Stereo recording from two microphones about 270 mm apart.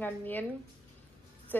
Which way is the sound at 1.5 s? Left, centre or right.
Centre.